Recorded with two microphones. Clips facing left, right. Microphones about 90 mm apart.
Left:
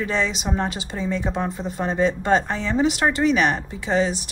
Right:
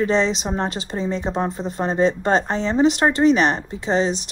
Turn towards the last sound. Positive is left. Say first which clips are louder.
# right 1 dB
turn(degrees=-30)  # may be behind; listen again after turning